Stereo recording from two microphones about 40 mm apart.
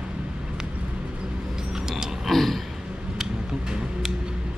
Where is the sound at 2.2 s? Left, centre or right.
Centre.